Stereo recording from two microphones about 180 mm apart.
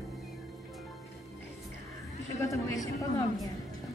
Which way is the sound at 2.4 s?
20° left (ahead or behind).